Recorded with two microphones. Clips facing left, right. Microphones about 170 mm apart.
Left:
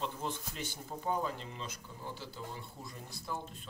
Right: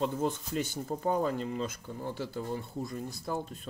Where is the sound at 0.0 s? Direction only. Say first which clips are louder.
Right 8 dB; 50° right (ahead or behind).